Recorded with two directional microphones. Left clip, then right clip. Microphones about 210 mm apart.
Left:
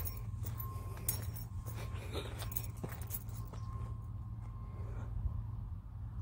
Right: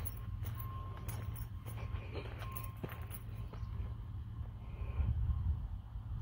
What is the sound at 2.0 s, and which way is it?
Keys jangling, 15° left (ahead or behind).